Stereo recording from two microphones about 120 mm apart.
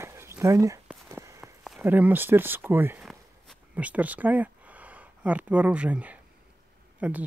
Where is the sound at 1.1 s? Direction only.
25° right (ahead or behind).